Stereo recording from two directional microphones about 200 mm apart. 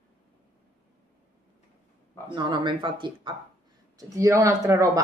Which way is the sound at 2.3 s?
25° right (ahead or behind).